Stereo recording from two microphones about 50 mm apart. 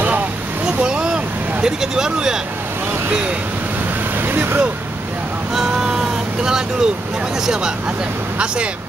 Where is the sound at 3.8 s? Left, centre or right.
Right.